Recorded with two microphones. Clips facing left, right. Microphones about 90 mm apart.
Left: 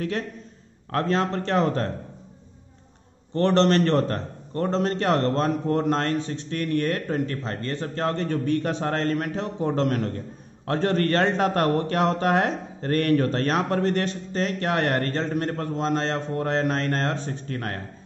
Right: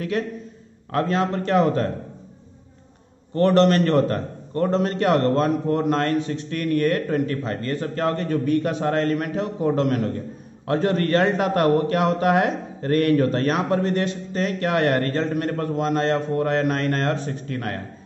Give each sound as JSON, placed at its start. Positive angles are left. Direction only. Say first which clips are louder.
{"t": 0.9, "sound": "speech", "louder": "right 2 dB", "side_deg": 35}
{"t": 3.4, "sound": "a man's voice", "louder": "right 2 dB", "side_deg": 30}